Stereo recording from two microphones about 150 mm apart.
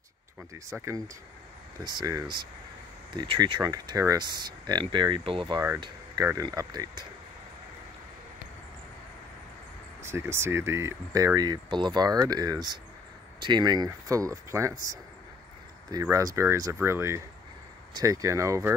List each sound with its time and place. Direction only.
0.7 s speech: 20° right (ahead or behind); by 5.6 s 35° right (ahead or behind)
6.4 s speech: 25° right (ahead or behind)
10.0 s speech: 15° right (ahead or behind)